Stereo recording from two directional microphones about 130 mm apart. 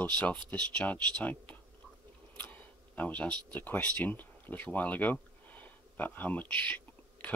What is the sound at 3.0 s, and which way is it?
Speech, 10° left (ahead or behind).